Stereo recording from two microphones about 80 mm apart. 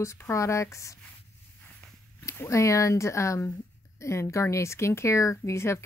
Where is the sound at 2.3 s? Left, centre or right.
Left.